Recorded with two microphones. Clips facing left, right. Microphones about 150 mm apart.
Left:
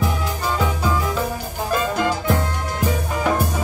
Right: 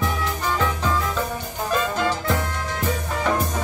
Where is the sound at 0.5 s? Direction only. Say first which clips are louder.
Left 2 dB; 10° left (ahead or behind).